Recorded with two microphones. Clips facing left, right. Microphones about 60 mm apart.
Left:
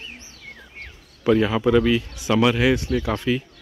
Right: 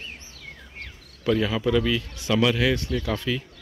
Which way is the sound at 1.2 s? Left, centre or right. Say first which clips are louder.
Left 5 dB; left.